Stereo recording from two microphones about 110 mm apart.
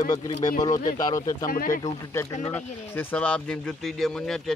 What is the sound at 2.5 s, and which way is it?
Speech, 15° left (ahead or behind).